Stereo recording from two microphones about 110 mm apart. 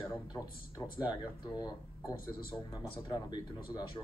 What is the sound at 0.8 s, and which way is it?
Speech, 25° left (ahead or behind).